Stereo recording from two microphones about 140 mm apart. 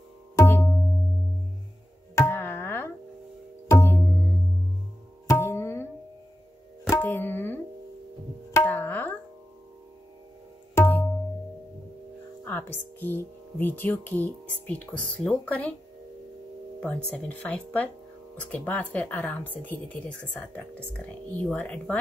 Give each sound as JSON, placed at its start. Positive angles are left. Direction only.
{"t": 0.4, "sound": "music", "side_deg": 15}
{"t": 2.1, "sound": "tabla", "side_deg": 15}
{"t": 3.8, "sound": "music", "side_deg": 15}
{"t": 5.3, "sound": "tabla", "side_deg": 20}
{"t": 6.9, "sound": "music", "side_deg": 15}
{"t": 8.6, "sound": "tabla", "side_deg": 15}
{"t": 10.7, "sound": "tabla", "side_deg": 15}
{"t": 12.4, "sound": "speech", "side_deg": 15}
{"t": 16.8, "sound": "speech", "side_deg": 10}